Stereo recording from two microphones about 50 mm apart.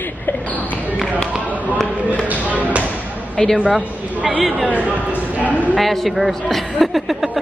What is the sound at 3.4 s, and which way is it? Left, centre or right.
Speech, centre.